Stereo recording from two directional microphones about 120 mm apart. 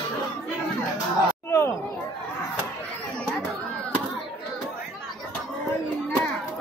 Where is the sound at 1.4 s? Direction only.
25° left (ahead or behind).